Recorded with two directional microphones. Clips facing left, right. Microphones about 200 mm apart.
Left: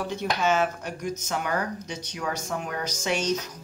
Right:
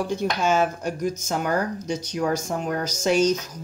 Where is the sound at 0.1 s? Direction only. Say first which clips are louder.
Right 1 dB; 40° right (ahead or behind).